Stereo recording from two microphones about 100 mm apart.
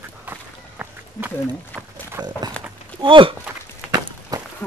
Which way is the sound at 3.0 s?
55° right (ahead or behind).